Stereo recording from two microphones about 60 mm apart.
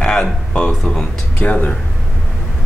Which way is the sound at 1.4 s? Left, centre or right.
Left.